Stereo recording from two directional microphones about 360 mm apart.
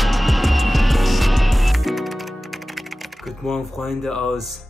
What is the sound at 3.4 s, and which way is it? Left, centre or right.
Speech, centre.